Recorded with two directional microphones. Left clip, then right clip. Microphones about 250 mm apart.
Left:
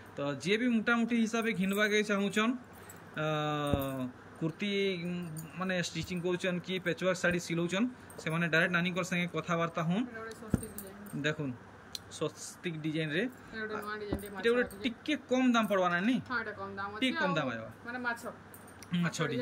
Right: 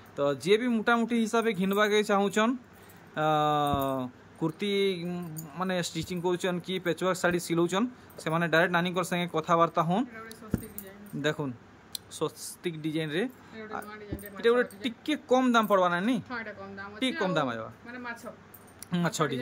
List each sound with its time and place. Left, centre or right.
0.1 s speech: centre
12.2 s speech: centre
13.8 s speech: centre
14.3 s speech: centre
17.0 s speech: centre
17.8 s speech: centre
18.9 s speech: centre